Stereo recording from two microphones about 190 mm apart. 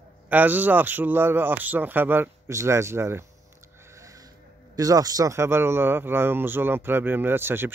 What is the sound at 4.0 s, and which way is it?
Music, 15° right (ahead or behind).